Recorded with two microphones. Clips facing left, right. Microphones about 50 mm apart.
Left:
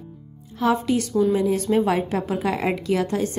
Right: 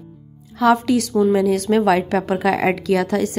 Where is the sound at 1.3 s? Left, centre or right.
Right.